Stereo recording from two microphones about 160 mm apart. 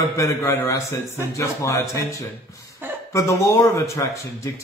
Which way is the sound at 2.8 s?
10° right (ahead or behind).